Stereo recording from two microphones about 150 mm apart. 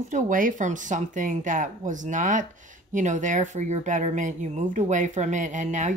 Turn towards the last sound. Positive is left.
turn(degrees=-55)  # may be behind; listen again after turning